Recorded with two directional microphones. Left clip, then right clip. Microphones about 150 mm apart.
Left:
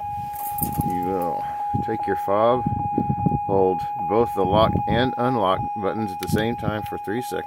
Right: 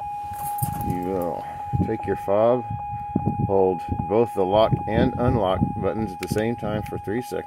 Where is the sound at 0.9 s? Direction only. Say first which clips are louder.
Left 3 dB; 20° left (ahead or behind).